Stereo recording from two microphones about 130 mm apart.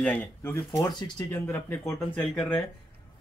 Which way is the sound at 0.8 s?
35° left (ahead or behind).